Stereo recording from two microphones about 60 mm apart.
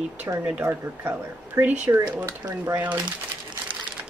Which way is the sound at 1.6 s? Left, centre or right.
Right.